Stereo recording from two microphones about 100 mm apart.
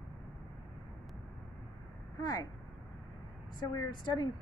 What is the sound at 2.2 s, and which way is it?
Speech, 40° left (ahead or behind).